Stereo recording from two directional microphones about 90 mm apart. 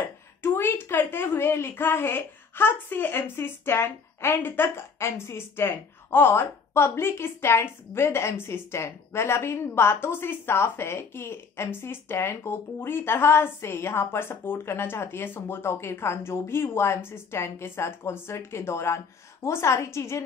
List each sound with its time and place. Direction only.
0.0 s a woman's voice: 25° left (ahead or behind)